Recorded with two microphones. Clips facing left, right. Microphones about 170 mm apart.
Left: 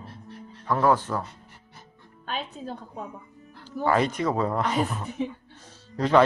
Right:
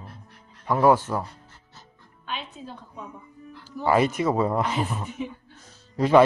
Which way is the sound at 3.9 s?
10° right (ahead or behind).